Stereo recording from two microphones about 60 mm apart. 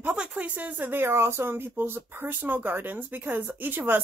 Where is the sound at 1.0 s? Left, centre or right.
Right.